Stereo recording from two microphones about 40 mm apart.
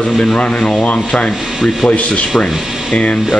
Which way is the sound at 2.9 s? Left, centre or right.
Left.